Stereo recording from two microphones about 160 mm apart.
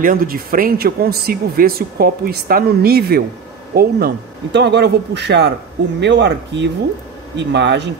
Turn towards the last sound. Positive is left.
turn(degrees=-90)